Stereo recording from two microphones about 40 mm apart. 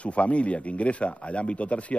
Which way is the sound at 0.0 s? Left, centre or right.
Left.